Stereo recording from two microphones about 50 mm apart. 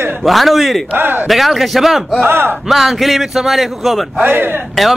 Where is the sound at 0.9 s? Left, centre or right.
Right.